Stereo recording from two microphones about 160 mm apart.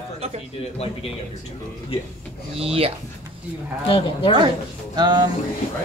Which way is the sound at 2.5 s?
35° right (ahead or behind).